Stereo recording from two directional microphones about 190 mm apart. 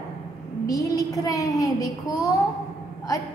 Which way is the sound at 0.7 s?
20° left (ahead or behind).